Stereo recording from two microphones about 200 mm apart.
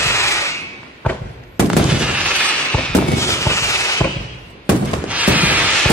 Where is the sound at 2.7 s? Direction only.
10° left (ahead or behind).